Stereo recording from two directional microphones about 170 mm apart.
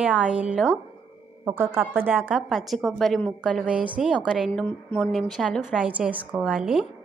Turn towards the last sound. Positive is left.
turn(degrees=-5)  # may be behind; listen again after turning